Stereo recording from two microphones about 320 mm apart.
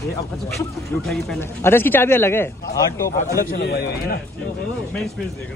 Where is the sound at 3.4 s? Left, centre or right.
Left.